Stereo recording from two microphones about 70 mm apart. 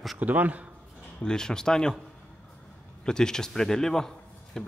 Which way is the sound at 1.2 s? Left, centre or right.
Centre.